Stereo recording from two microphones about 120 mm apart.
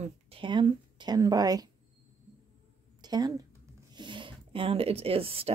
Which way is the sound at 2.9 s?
35° right (ahead or behind).